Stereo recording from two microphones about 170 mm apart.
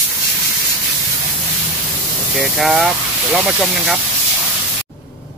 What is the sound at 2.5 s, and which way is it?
Speech, centre (ahead or behind).